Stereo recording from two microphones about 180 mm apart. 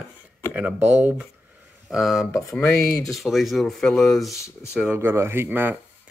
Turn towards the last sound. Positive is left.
turn(degrees=-10)  # may be behind; listen again after turning